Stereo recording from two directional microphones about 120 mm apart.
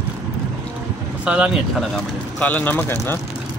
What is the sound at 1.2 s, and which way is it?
Speech, 10° right (ahead or behind).